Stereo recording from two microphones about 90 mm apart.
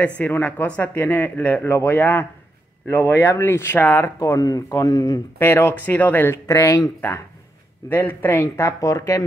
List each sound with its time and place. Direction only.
0.0 s speech: 20° left (ahead or behind)
4.2 s speech: 40° left (ahead or behind)
5.4 s speech: 25° left (ahead or behind)